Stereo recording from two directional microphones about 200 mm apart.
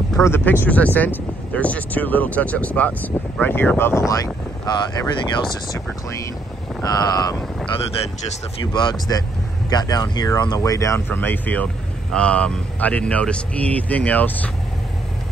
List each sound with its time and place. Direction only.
0.2 s speech: 10° left (ahead or behind)
8.7 s speech: 20° left (ahead or behind)